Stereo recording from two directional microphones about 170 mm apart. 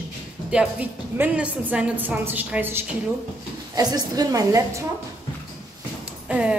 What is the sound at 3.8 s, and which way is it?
A woman's voice, 25° right (ahead or behind).